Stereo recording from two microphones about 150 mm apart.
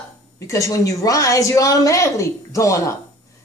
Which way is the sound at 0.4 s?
20° left (ahead or behind).